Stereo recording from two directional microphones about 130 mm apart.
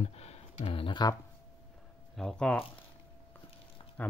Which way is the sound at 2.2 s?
5° left (ahead or behind).